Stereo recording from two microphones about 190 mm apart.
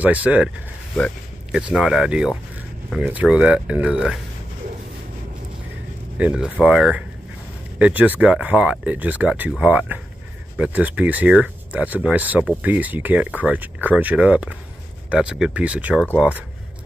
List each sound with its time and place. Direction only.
0.0 s speech: 5° right (ahead or behind)
0.9 s speech: 5° left (ahead or behind)
6.1 s speech: 5° right (ahead or behind)